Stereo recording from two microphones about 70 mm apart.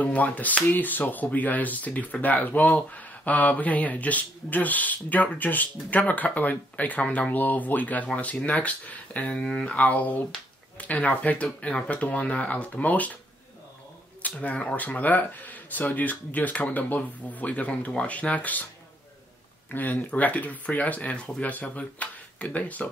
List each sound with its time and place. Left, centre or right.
0.0 s speech: left
14.2 s speech: left
19.7 s speech: left